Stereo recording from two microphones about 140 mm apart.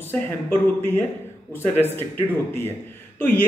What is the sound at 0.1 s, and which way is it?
Speech, 15° left (ahead or behind).